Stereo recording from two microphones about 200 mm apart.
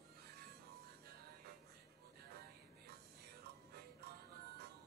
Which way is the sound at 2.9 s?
55° right (ahead or behind).